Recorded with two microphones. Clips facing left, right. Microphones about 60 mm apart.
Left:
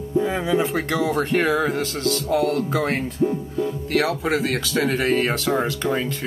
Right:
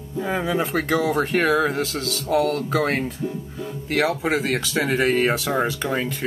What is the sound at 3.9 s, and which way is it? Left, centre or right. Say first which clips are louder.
Speech: right 2 dB; centre.